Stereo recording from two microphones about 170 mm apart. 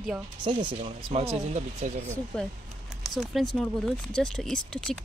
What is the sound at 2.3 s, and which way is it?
Speech, 5° left (ahead or behind).